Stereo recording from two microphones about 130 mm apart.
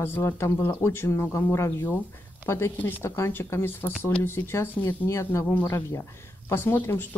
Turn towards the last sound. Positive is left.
turn(degrees=15)  # may be behind; listen again after turning